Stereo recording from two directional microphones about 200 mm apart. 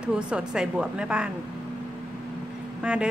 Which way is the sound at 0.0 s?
5° right (ahead or behind).